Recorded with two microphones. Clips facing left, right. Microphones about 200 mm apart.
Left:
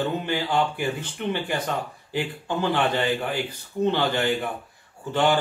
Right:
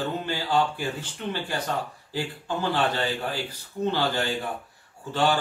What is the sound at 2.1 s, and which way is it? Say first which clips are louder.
Speech: left 3 dB; 20° left (ahead or behind).